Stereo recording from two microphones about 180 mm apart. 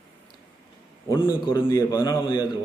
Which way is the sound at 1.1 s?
25° left (ahead or behind).